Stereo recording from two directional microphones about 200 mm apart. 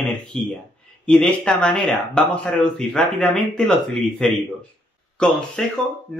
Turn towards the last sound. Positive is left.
turn(degrees=5)  # may be behind; listen again after turning